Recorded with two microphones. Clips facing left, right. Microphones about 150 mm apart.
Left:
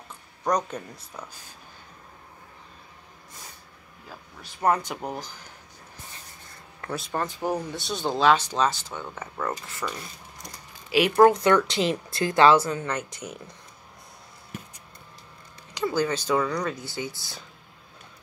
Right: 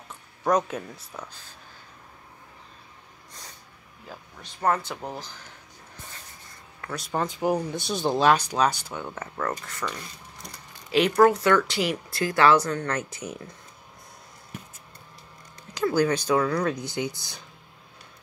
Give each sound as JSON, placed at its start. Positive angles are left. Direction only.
{"t": 0.4, "sound": "speech", "side_deg": -5}
{"t": 4.4, "sound": "speech", "side_deg": 15}
{"t": 7.1, "sound": "speech", "side_deg": -15}
{"t": 9.2, "sound": "speech", "side_deg": 10}
{"t": 11.0, "sound": "speech", "side_deg": 20}
{"t": 12.5, "sound": "speech", "side_deg": 5}
{"t": 12.9, "sound": "speech", "side_deg": -5}
{"t": 15.9, "sound": "speech", "side_deg": -15}
{"t": 16.7, "sound": "speech", "side_deg": -15}